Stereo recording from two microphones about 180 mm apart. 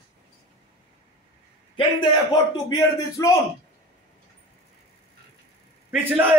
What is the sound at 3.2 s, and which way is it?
Speech, 20° left (ahead or behind).